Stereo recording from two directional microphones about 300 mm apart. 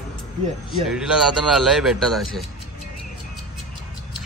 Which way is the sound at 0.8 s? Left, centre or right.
Centre.